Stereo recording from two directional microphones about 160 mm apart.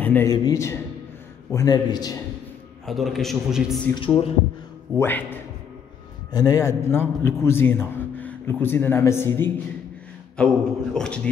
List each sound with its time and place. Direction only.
0.0 s a man's voice: 10° left (ahead or behind)
0.3 s a man's voice: 20° left (ahead or behind)
2.8 s a man's voice: centre (ahead or behind)
3.9 s speech: 30° left (ahead or behind)
4.9 s a man's voice: 10° left (ahead or behind)
6.3 s a man's voice: 25° left (ahead or behind); by 11.1 s 5° left (ahead or behind)